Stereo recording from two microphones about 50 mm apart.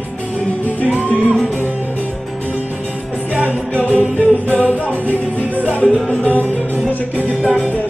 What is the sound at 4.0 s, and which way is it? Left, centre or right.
A capella, right.